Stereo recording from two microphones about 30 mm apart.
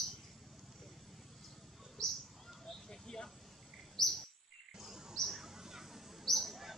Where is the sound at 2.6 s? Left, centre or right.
Left.